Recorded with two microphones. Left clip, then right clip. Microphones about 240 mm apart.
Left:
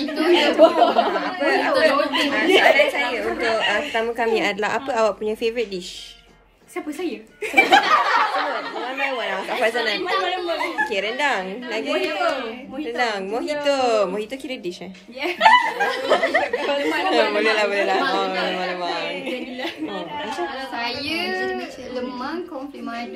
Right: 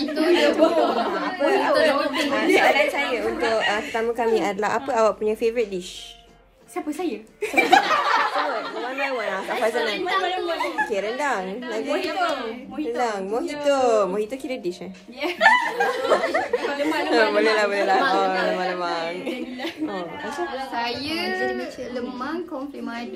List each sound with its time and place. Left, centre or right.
0.0 s speech: centre
4.5 s a woman's voice: left
5.0 s speech: centre
7.0 s speech: centre
15.2 s speech: centre
20.7 s speech: centre